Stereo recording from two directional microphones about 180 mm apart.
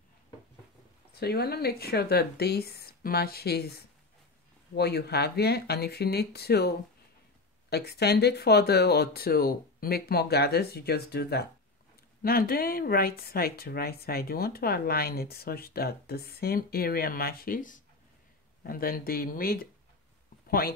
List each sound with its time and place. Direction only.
1.1 s speech: 65° left (ahead or behind)